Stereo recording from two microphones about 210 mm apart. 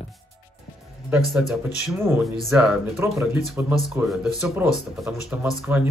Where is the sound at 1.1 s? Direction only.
Centre (ahead or behind).